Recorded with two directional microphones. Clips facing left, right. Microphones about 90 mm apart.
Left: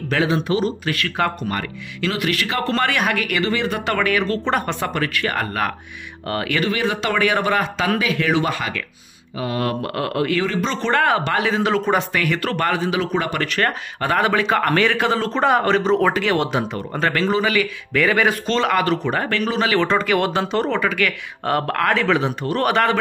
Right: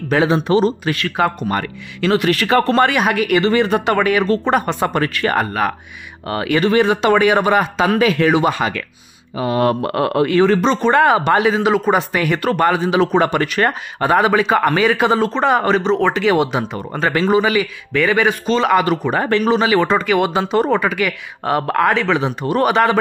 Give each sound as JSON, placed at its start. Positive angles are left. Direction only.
{"t": 0.3, "sound": "speech", "side_deg": -35}
{"t": 2.7, "sound": "a man's voice", "side_deg": -20}
{"t": 4.9, "sound": "speech", "side_deg": -35}
{"t": 5.4, "sound": "speech", "side_deg": -10}
{"t": 6.6, "sound": "a man's voice", "side_deg": -35}
{"t": 10.7, "sound": "speech", "side_deg": -15}
{"t": 12.1, "sound": "a man's voice", "side_deg": -20}
{"t": 12.9, "sound": "speech", "side_deg": -35}
{"t": 13.4, "sound": "speech", "side_deg": -15}
{"t": 15.3, "sound": "a man's voice", "side_deg": 0}
{"t": 16.3, "sound": "speech", "side_deg": -10}
{"t": 17.9, "sound": "speech", "side_deg": 0}